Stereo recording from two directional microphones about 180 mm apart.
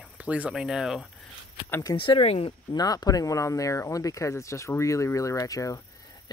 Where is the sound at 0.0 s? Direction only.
5° right (ahead or behind).